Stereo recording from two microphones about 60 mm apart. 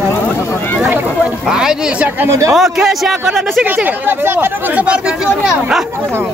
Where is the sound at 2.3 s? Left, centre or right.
Right.